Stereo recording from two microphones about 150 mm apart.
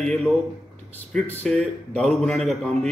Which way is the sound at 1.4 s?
5° left (ahead or behind).